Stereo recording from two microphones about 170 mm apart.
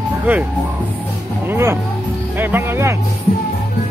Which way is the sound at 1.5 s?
15° right (ahead or behind).